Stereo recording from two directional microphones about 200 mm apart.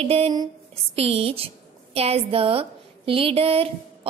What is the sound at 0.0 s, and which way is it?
Speech, 30° right (ahead or behind).